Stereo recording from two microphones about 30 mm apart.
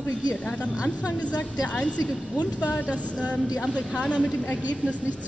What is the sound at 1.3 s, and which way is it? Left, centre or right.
Speech, left.